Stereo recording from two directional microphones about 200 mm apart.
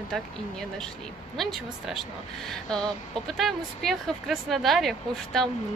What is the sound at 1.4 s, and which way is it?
Speech, centre (ahead or behind).